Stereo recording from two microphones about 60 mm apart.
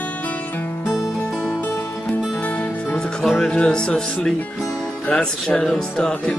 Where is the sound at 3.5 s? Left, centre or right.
Centre.